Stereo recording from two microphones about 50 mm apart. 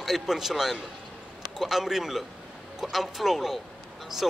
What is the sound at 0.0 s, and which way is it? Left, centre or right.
Speech, centre.